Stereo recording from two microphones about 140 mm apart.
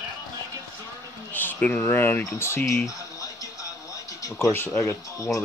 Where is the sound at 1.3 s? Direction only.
10° left (ahead or behind).